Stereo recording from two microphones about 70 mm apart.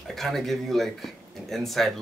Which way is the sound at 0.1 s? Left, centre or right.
Centre.